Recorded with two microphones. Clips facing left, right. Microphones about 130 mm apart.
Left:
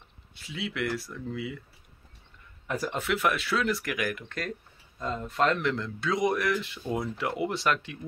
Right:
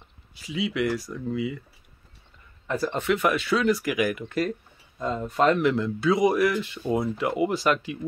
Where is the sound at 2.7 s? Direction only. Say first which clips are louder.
Right 5 dB; 5° left (ahead or behind).